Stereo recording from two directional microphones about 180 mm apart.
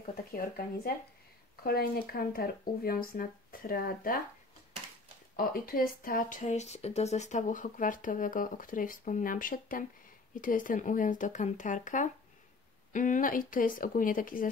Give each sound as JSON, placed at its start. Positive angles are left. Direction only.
{"t": 0.1, "sound": "speech", "side_deg": 55}
{"t": 5.3, "sound": "speech", "side_deg": 55}